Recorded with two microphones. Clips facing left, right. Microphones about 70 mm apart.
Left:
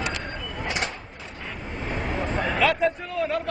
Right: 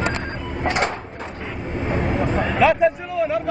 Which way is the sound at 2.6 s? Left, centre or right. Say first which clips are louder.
Right 6 dB; centre.